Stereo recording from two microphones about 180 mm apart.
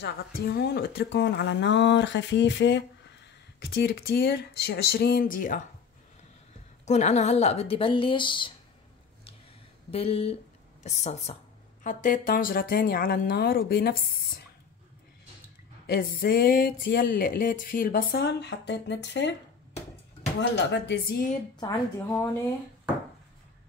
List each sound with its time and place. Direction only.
0.0 s a woman's voice: 65° left (ahead or behind); by 2.8 s 80° left
3.7 s speech: 60° left (ahead or behind)
6.9 s a woman's voice: 40° left (ahead or behind)
9.8 s a woman's voice: 35° left (ahead or behind); by 14.4 s 60° left (ahead or behind)
15.9 s a sound: 60° left (ahead or behind)
18.2 s a woman's voice: 80° left
20.3 s a woman's voice: 75° left (ahead or behind)
21.5 s a woman's voice: 20° left (ahead or behind)